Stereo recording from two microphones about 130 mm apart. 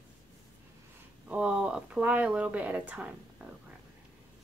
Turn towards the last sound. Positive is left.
turn(degrees=-10)  # may be behind; listen again after turning